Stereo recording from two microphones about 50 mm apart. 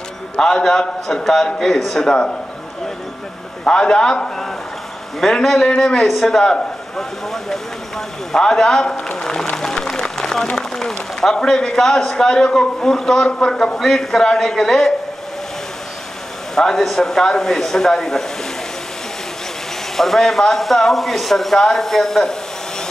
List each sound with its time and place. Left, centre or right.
0.4 s a man's voice: centre
3.6 s a man's voice: centre
5.2 s a man's voice: centre
6.4 s speech: centre
7.2 s a man's voice: centre
16.5 s a man's voice: centre
20.0 s speech: centre